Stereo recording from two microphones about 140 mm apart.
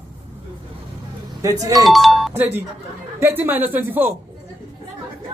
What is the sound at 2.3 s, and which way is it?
A woman's voice, 15° right (ahead or behind).